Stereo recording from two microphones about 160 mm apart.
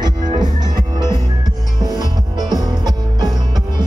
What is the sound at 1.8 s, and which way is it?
Music, 25° right (ahead or behind).